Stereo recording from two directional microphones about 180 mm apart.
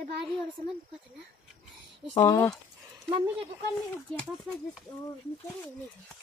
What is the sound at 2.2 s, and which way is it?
Speech, 15° left (ahead or behind).